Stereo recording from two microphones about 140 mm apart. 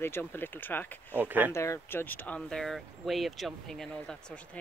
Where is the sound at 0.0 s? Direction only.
15° left (ahead or behind).